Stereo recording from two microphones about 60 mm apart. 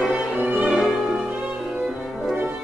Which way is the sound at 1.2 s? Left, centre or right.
Right.